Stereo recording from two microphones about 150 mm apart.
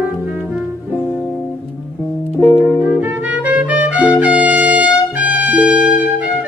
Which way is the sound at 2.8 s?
15° right (ahead or behind).